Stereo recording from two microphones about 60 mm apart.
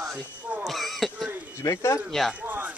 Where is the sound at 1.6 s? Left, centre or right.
Left.